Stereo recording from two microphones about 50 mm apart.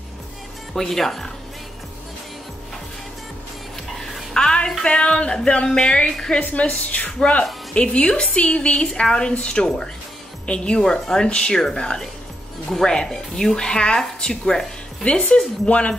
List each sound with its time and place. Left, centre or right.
0.7 s speech: centre
3.9 s a sound: centre
5.7 s speech: centre
6.4 s a woman's voice: left; by 15.0 s centre
15.0 s a woman's voice: left